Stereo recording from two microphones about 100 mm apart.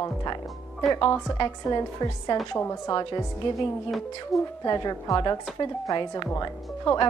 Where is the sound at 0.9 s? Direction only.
50° left (ahead or behind).